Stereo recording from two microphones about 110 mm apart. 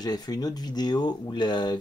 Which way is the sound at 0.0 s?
35° left (ahead or behind).